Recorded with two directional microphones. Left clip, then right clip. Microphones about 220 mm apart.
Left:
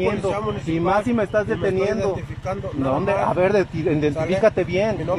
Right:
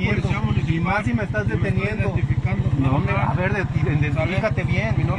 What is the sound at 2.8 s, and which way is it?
Speech, 15° left (ahead or behind).